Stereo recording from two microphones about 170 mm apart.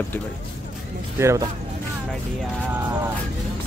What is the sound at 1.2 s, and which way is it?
Speech, 15° right (ahead or behind).